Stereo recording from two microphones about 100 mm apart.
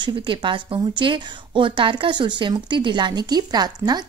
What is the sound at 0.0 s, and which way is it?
A woman's voice, 55° right (ahead or behind).